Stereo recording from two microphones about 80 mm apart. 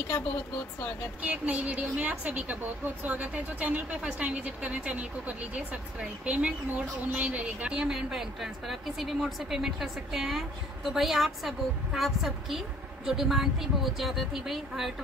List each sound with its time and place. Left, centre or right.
1.2 s a woman's voice: centre